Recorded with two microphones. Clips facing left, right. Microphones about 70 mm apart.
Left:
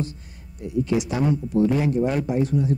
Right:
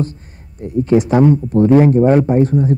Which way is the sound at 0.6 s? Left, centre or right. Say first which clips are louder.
Right 9 dB; right.